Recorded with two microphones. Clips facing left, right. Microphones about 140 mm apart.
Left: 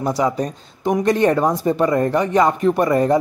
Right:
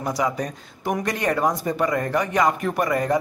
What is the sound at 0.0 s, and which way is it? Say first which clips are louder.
Speech: left 5 dB; 30° left (ahead or behind).